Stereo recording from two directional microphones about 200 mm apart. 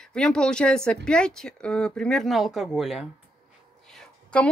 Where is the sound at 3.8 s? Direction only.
5° left (ahead or behind).